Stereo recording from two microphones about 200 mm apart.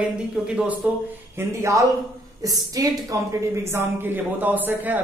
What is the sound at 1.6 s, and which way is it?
Speech, 15° right (ahead or behind).